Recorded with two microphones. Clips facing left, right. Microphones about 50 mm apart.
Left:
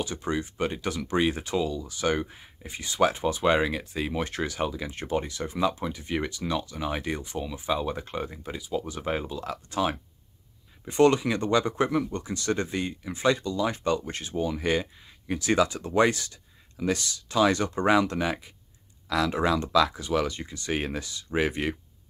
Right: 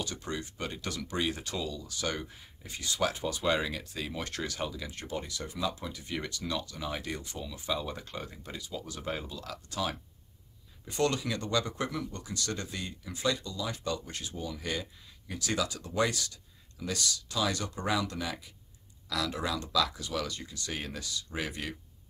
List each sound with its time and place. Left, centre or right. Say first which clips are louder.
0.0 s speech: left 7 dB; left